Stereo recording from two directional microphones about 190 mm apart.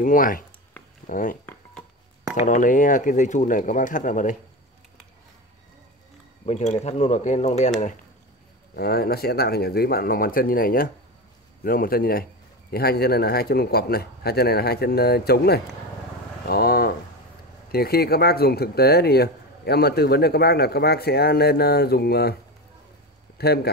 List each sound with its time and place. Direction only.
0.0 s speech: 45° left (ahead or behind)
6.4 s speech: 35° left (ahead or behind)
8.7 s speech: 55° left (ahead or behind)
23.3 s speech: 55° left (ahead or behind)